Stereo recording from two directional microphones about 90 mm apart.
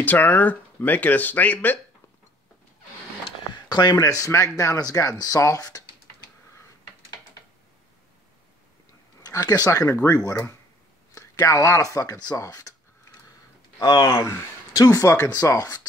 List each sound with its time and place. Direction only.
0.0 s speech: 20° left (ahead or behind)
3.6 s speech: 55° left (ahead or behind)
4.0 s speech: 40° left (ahead or behind)
9.2 s speech: 45° left (ahead or behind)
13.7 s speech: 55° left (ahead or behind)
14.0 s speech: 35° left (ahead or behind)